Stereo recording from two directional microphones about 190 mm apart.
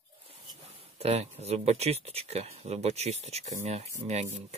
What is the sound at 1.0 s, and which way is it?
Speech, 35° right (ahead or behind).